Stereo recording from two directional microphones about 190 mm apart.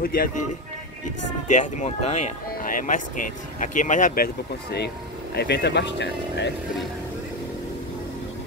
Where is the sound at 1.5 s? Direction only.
40° left (ahead or behind); by 6.5 s 65° left (ahead or behind).